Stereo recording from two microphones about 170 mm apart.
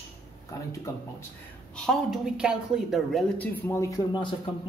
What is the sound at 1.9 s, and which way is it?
A woman's voice, 5° right (ahead or behind).